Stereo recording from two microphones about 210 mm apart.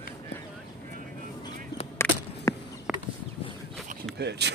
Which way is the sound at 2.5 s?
15° left (ahead or behind).